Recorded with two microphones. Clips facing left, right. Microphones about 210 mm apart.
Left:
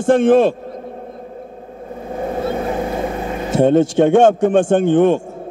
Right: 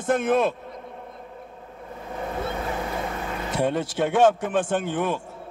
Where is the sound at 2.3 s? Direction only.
35° left (ahead or behind).